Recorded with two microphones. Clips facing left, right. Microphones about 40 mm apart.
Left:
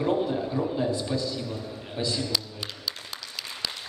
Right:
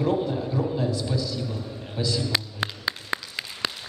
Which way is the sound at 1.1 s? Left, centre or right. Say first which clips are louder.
Even; left.